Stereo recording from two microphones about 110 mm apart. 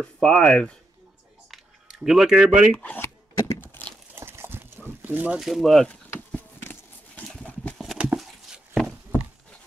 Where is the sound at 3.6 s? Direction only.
15° left (ahead or behind).